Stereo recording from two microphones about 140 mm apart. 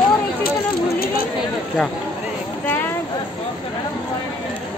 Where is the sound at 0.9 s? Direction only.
90° left.